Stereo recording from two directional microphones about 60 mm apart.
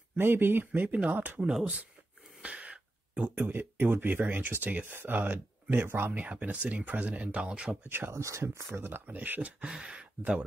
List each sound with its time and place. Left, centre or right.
0.2 s speech: right
2.4 s a sound: centre
3.3 s speech: right
6.1 s speech: right
7.9 s speech: right
8.2 s speech: right; by 10.4 s centre